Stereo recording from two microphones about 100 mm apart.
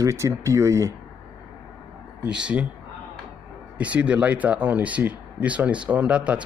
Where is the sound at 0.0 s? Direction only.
30° right (ahead or behind).